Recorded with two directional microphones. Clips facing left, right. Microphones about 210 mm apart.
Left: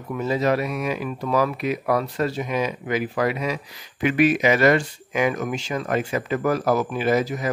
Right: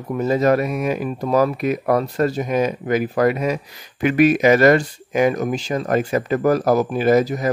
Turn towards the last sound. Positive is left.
turn(degrees=-40)  # may be behind; listen again after turning